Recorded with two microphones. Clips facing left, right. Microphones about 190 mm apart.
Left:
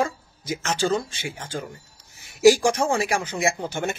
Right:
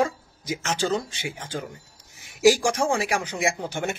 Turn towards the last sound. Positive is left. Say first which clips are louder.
# left 1 dB
turn(degrees=-15)  # may be behind; listen again after turning